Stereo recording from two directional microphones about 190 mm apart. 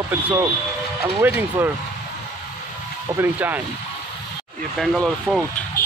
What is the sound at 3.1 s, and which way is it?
Speech, 10° right (ahead or behind).